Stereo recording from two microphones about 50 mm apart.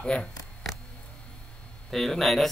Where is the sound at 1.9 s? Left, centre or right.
Centre.